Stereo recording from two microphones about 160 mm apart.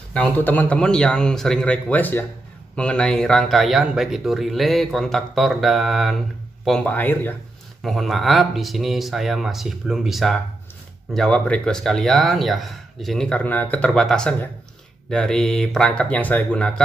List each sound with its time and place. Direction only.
0.1 s speech: 10° left (ahead or behind)
7.8 s speech: centre (ahead or behind)